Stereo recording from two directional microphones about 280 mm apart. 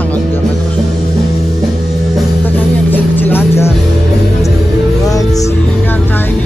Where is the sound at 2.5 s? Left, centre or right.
Centre.